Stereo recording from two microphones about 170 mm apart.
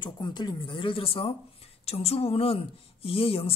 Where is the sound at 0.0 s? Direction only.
25° left (ahead or behind).